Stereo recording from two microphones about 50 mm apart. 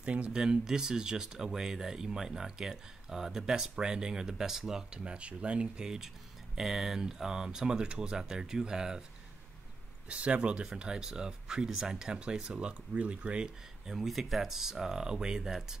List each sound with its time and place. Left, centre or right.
0.0 s speech: right
0.3 s speech: centre
10.0 s speech: right
13.8 s speech: centre